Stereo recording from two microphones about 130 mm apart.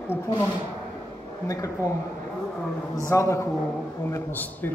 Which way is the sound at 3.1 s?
20° left (ahead or behind).